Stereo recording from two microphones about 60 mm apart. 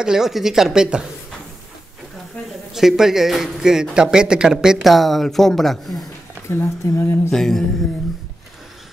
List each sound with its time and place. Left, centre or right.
0.0 s speech: centre
2.7 s speech: centre
4.8 s speech: centre
6.5 s speech: left
7.2 s mantra: centre